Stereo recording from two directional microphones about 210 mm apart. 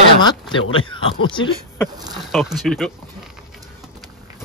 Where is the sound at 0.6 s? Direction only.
75° left (ahead or behind).